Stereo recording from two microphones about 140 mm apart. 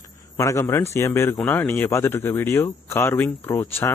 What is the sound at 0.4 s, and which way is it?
A man's voice, 20° left (ahead or behind).